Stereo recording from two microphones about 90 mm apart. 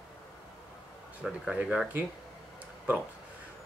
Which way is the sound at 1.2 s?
10° right (ahead or behind).